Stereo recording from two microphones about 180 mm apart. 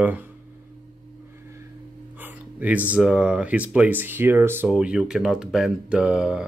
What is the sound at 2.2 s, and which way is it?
Speech, 10° right (ahead or behind).